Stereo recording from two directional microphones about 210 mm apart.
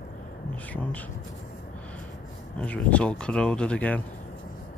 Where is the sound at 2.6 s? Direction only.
5° left (ahead or behind).